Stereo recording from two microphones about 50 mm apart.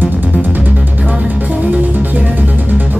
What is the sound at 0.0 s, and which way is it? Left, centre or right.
Music, right.